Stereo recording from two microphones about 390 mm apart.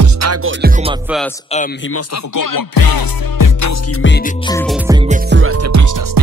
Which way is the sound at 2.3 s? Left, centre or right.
Left.